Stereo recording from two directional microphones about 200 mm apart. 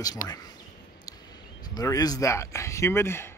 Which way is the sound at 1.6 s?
20° left (ahead or behind).